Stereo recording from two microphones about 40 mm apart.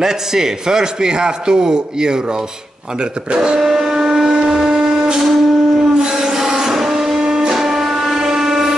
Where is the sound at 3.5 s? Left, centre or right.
Centre.